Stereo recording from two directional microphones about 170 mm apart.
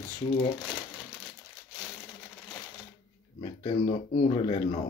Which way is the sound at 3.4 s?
30° left (ahead or behind).